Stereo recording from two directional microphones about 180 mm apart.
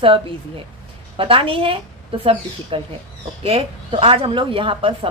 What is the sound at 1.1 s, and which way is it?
Speech, 30° right (ahead or behind).